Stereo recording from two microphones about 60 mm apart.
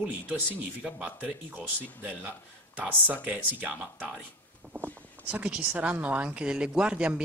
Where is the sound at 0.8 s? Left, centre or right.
Centre.